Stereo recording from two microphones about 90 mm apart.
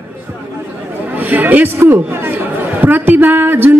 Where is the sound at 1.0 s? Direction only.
20° right (ahead or behind).